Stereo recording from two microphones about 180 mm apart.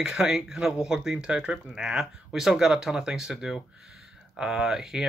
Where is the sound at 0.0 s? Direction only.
5° right (ahead or behind).